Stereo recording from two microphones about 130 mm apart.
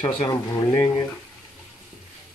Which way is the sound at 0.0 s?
25° left (ahead or behind).